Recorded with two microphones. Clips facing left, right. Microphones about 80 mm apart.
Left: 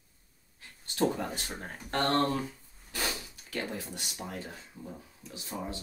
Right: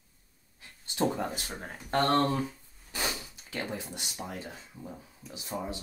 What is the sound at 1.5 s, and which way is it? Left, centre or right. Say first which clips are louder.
Speech: right 3 dB; centre.